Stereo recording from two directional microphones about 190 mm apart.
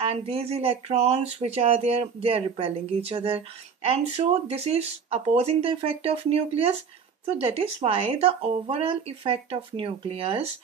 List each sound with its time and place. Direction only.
0.0 s speech: 30° right (ahead or behind)